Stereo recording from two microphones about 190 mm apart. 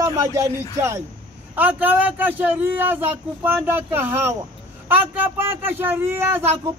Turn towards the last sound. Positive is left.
turn(degrees=-10)  # may be behind; listen again after turning